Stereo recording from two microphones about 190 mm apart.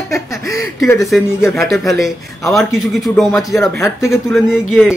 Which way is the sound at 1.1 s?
Centre (ahead or behind).